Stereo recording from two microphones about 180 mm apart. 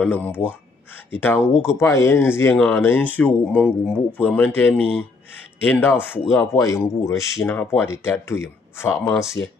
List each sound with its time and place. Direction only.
0.0 s speech: 10° left (ahead or behind)